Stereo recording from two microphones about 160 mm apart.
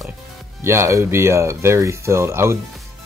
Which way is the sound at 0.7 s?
20° right (ahead or behind).